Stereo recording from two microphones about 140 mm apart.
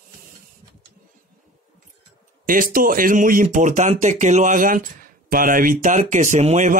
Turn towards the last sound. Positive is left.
turn(degrees=-55)  # may be behind; listen again after turning